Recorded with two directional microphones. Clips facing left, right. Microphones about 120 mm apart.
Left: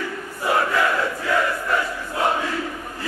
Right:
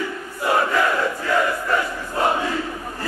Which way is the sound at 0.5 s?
5° right (ahead or behind).